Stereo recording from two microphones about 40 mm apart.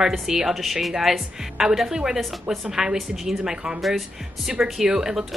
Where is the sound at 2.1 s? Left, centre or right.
Centre.